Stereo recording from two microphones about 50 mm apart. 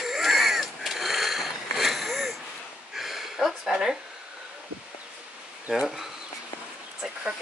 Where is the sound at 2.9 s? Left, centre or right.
Centre.